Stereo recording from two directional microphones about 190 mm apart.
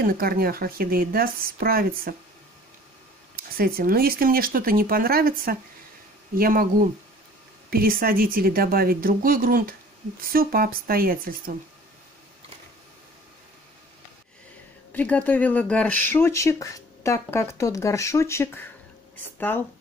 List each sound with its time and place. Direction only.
0.0 s speech: 50° right (ahead or behind)
3.3 s speech: 50° right (ahead or behind)
7.7 s speech: 50° right (ahead or behind)
14.9 s speech: 10° left (ahead or behind)